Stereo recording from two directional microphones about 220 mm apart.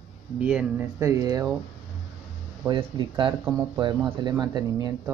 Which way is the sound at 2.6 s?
20° right (ahead or behind).